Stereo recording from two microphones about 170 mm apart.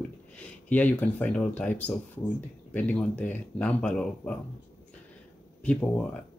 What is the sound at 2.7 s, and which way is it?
Speech, 10° left (ahead or behind).